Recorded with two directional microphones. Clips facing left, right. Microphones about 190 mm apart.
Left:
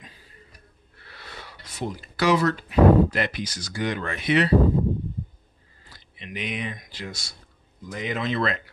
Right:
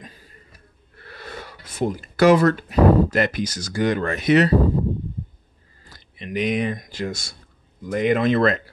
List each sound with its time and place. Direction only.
0.9 s speech: 50° right (ahead or behind)
5.9 s speech: 45° right (ahead or behind)